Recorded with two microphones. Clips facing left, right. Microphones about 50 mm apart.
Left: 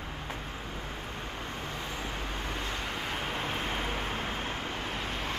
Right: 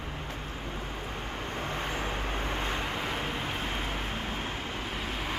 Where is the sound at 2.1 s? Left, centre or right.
Right.